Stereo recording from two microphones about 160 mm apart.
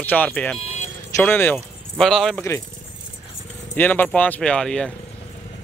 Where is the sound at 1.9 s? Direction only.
Centre (ahead or behind).